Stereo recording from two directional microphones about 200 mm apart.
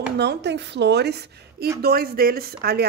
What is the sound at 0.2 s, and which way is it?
A woman's voice, 55° right (ahead or behind).